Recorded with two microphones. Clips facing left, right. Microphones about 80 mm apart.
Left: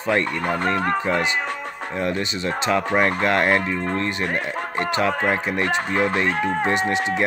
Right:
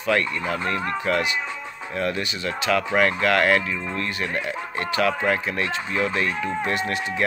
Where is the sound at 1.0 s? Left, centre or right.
Left.